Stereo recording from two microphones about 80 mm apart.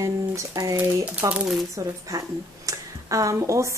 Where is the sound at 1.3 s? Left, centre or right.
Centre.